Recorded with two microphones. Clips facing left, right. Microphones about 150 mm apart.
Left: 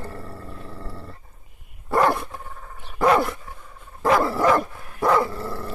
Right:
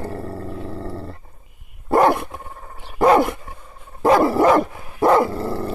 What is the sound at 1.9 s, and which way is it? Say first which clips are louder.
Dog: right 5 dB; 25° right (ahead or behind).